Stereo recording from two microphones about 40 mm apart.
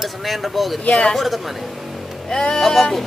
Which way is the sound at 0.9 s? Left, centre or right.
Centre.